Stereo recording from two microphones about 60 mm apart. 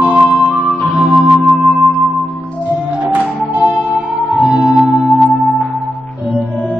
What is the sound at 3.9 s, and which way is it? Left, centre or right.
Music, centre.